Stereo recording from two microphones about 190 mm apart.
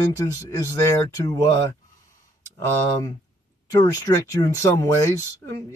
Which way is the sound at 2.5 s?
15° left (ahead or behind).